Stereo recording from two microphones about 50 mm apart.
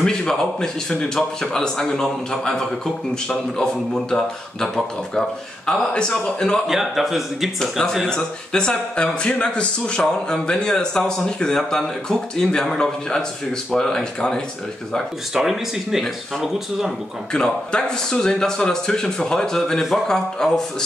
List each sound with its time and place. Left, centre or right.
0.0 s speech: centre
4.1 s speech: centre
6.7 s speech: centre
8.1 s speech: centre
15.3 s speech: centre
17.3 s speech: centre